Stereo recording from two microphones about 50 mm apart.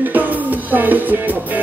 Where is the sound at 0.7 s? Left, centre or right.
Right.